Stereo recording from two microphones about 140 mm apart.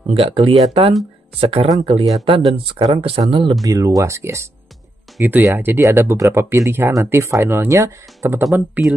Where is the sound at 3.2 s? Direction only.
40° right (ahead or behind).